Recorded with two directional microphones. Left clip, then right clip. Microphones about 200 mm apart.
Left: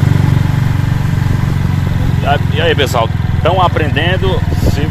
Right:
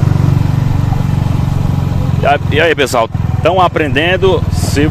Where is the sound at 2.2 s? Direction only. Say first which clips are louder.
Right 3 dB; 55° right (ahead or behind).